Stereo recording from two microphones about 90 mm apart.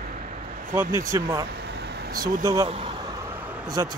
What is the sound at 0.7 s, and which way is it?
Speech, 30° right (ahead or behind).